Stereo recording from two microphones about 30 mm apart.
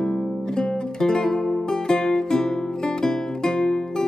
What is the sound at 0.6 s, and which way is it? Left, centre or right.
Music, left.